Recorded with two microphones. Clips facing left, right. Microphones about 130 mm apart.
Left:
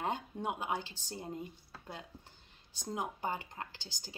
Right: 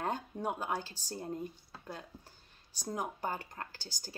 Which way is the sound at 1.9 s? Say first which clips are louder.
Right 2 dB; 20° left (ahead or behind).